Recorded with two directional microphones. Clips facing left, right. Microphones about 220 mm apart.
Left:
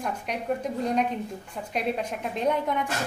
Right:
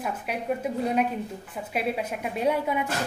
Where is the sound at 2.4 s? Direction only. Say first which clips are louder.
Right 1 dB; 10° right (ahead or behind).